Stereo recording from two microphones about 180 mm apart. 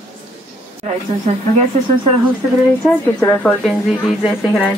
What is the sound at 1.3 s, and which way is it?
Speech, 35° right (ahead or behind).